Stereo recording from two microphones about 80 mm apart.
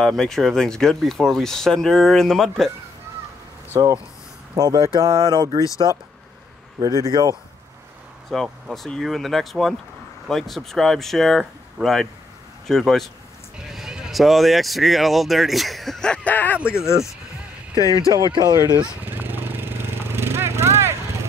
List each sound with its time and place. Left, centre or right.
0.0 s speech: centre
3.8 s speech: right
6.8 s speech: right
8.3 s speech: centre
16.6 s speech: left
17.7 s speech: left
19.0 s a sound: right